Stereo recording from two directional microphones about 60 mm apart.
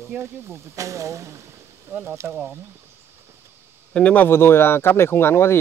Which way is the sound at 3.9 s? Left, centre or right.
Centre.